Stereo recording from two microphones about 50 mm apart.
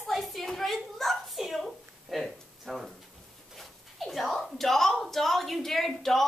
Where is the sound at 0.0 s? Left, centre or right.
Centre.